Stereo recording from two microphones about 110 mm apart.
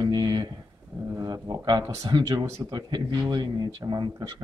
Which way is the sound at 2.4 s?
25° right (ahead or behind).